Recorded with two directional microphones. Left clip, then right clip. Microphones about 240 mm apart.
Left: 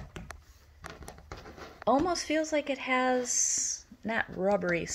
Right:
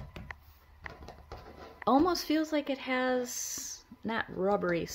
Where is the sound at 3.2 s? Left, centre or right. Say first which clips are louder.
Left 6 dB; right.